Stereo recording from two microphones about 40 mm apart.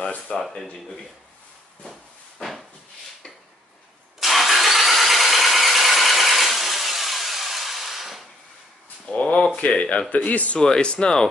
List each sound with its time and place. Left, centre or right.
0.3 s speech: left
4.2 s engine starting: centre
9.0 s a sound: left
9.7 s speech: left
10.6 s speech: left